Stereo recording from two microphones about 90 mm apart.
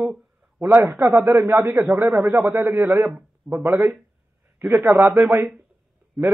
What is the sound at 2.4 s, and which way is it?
Speech, 25° right (ahead or behind).